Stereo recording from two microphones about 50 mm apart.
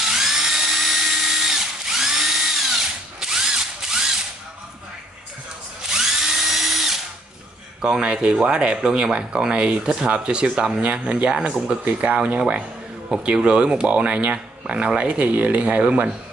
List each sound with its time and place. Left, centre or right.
0.0 s drill: centre
5.8 s drill: centre
7.8 s speech: centre